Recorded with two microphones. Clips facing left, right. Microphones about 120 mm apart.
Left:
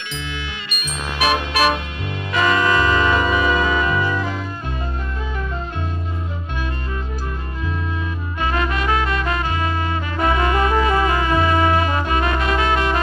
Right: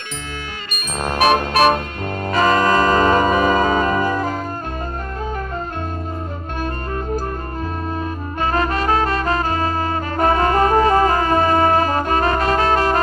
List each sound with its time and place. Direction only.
1.0 s music: 45° right (ahead or behind)
8.4 s music: 40° right (ahead or behind)